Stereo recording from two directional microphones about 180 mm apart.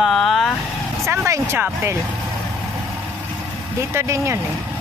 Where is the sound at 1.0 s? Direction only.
15° right (ahead or behind).